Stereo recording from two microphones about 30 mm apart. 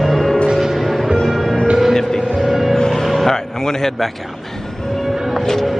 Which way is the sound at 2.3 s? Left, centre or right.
Centre.